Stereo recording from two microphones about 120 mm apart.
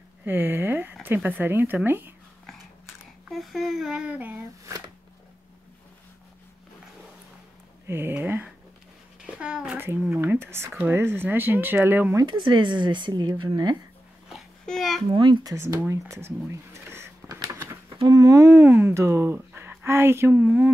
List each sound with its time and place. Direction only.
0.2 s speech: 15° right (ahead or behind)
3.3 s speech: centre (ahead or behind)
4.6 s shuffling cards: 30° right (ahead or behind)
7.8 s a child's voice: 20° right (ahead or behind)
12.2 s a woman's voice: 40° right (ahead or behind)
14.7 s speech: 5° left (ahead or behind)
15.0 s a woman's voice: 35° right (ahead or behind)
15.5 s speech: 25° right (ahead or behind)
15.9 s a sound: 20° right (ahead or behind)
18.0 s speech: 30° right (ahead or behind); by 20.7 s 15° right (ahead or behind)